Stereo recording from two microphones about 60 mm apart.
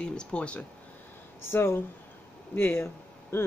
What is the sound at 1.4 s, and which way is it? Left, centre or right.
Speech, left.